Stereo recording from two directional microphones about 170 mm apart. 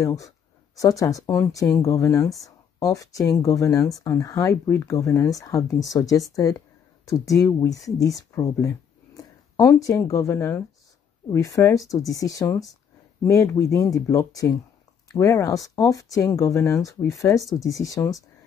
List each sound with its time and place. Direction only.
0.0 s speech: 20° left (ahead or behind)
17.4 s speech: centre (ahead or behind)
17.6 s speech: 20° left (ahead or behind)